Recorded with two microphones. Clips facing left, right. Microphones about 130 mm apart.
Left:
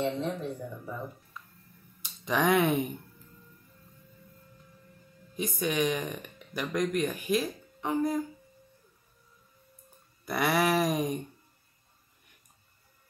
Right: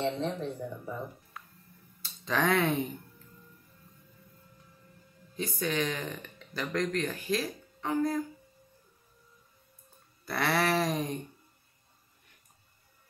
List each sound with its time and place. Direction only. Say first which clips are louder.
0.0 s speech: left 1 dB; 30° right (ahead or behind)
2.0 s speech: left 2 dB; 15° left (ahead or behind)
5.3 s speech: left 2 dB; 15° left (ahead or behind)
10.2 s speech: left 2 dB; 15° left (ahead or behind)